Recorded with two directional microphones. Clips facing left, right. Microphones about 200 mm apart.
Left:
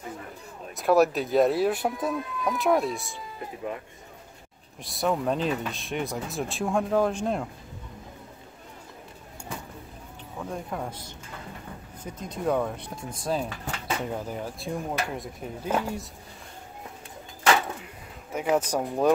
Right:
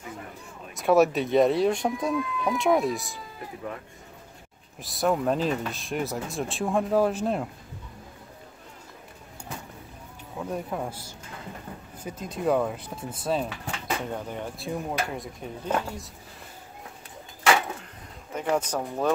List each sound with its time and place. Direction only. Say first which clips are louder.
0.7 s speech: right 1 dB; centre (ahead or behind)
3.6 s speech: left 3 dB; 20° left (ahead or behind)
4.8 s speech: right 2 dB; centre (ahead or behind)
10.4 s speech: right 2 dB; 5° right (ahead or behind)
18.3 s speech: left 2 dB; 10° left (ahead or behind)